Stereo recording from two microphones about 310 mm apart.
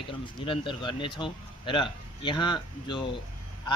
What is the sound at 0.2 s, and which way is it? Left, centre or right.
Speech, centre.